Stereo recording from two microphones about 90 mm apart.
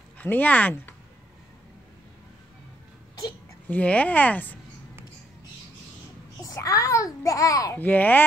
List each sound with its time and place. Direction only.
0.2 s speech: 20° left (ahead or behind)
3.6 s speech: 15° left (ahead or behind)
6.4 s a child's voice: 40° left (ahead or behind)
7.7 s speech: 20° left (ahead or behind)